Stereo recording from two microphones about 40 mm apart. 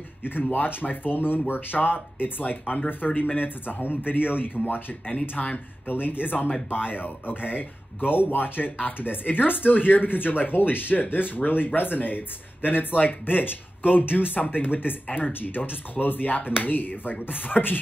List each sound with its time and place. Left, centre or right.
0.2 s speech: left
3.0 s speech: left
3.3 s speech: left
5.4 s speech: centre
5.9 s speech: left